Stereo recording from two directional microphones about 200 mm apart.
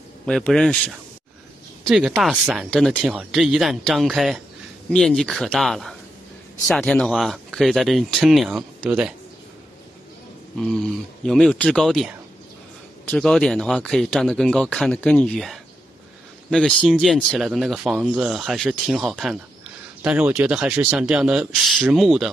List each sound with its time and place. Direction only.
0.3 s speech: centre (ahead or behind)
10.6 s speech: 5° left (ahead or behind)